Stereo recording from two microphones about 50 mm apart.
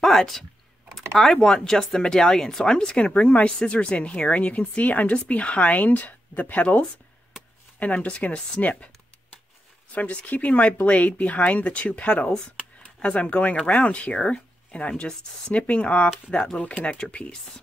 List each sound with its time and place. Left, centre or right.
0.0 s speech: centre; by 8.9 s left
9.9 s speech: left